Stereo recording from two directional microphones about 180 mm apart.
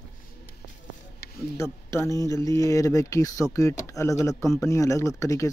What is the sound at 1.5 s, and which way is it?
Speech, 15° left (ahead or behind).